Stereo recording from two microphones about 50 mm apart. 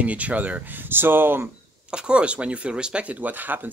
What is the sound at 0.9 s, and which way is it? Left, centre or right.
Speech, right.